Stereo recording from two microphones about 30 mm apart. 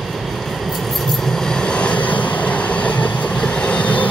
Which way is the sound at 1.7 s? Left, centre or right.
Left.